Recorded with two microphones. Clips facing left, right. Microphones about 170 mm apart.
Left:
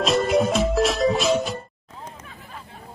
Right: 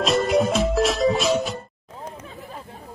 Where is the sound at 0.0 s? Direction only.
Centre (ahead or behind).